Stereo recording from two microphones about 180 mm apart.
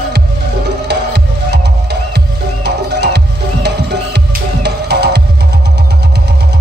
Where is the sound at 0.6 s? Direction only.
70° right (ahead or behind).